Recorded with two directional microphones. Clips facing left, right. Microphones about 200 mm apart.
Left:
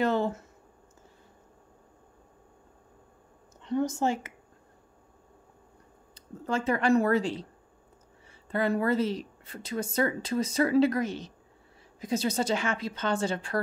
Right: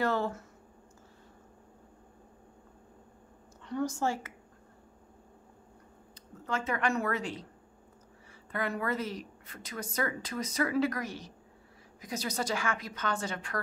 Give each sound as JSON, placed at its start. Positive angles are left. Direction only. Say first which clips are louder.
{"t": 0.0, "sound": "a sound", "louder": "left 4 dB", "side_deg": 20}
{"t": 3.6, "sound": "a woman's voice", "louder": "left 4 dB", "side_deg": 20}
{"t": 6.4, "sound": "a woman's voice", "louder": "left 5 dB", "side_deg": 30}
{"t": 8.5, "sound": "a woman's voice", "louder": "left 7 dB", "side_deg": 30}